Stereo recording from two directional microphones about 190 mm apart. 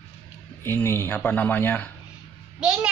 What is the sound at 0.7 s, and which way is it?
Speech, 15° left (ahead or behind).